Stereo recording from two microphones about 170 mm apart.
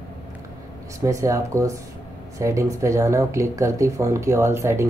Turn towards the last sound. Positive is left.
turn(degrees=-15)  # may be behind; listen again after turning